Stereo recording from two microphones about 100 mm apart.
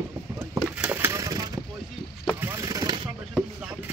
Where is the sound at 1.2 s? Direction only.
40° right (ahead or behind).